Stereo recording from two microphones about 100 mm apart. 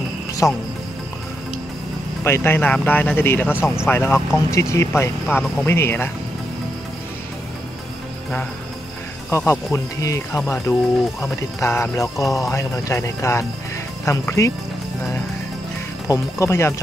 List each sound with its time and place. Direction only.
0.4 s speech: 25° left (ahead or behind)
2.2 s speech: 25° left (ahead or behind)
9.5 s speech: 30° left (ahead or behind)
16.1 s speech: 30° left (ahead or behind)